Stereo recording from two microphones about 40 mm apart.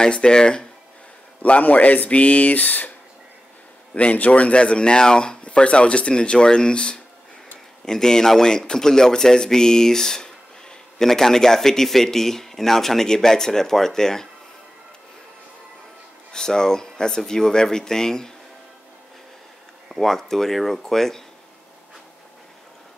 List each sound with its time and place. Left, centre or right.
0.1 s speech: left
1.4 s speech: left
3.9 s speech: left; by 14.2 s centre
16.3 s speech: centre
19.9 s speech: centre